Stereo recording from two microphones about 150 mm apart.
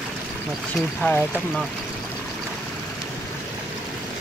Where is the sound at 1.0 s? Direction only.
15° left (ahead or behind).